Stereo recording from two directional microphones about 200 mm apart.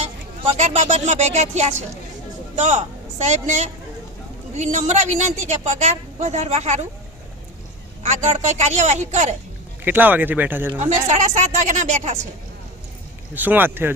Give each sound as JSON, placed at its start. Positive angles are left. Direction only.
{"t": 0.0, "sound": "speech", "side_deg": -30}
{"t": 3.3, "sound": "a woman's voice", "side_deg": -35}
{"t": 8.0, "sound": "a woman's voice", "side_deg": -35}
{"t": 9.8, "sound": "speech", "side_deg": -10}
{"t": 10.8, "sound": "a woman's voice", "side_deg": -35}
{"t": 13.3, "sound": "speech", "side_deg": -10}